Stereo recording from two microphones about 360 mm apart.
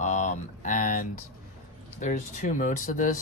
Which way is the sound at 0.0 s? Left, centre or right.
Centre.